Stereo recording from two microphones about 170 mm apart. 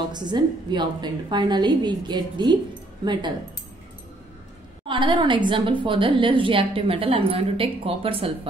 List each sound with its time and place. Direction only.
0.1 s a woman's voice: 25° right (ahead or behind)
4.8 s a woman's voice: 30° right (ahead or behind)